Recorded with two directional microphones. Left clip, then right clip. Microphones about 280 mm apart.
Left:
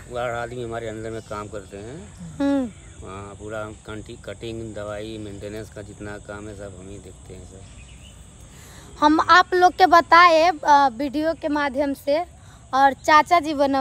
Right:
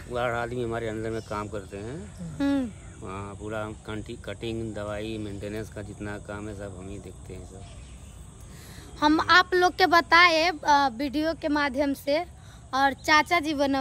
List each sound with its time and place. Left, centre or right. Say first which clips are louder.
0.1 s speech: left 1 dB; centre
2.3 s a woman's voice: left 5 dB; centre
3.1 s speech: left 1 dB; centre
8.9 s a woman's voice: left 5 dB; centre